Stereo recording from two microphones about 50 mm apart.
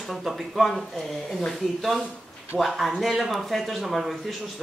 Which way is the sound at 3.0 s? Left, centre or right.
Centre.